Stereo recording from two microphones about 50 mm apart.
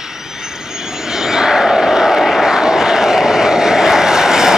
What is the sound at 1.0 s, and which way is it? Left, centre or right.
Vehicle, centre.